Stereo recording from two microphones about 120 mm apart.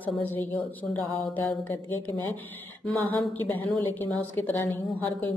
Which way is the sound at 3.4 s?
15° left (ahead or behind).